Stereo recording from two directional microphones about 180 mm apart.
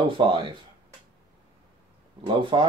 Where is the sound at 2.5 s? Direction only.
25° right (ahead or behind).